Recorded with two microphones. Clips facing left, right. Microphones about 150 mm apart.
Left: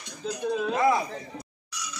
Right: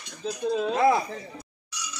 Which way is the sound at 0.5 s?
30° right (ahead or behind).